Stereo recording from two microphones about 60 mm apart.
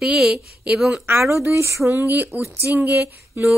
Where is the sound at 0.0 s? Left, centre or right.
Centre.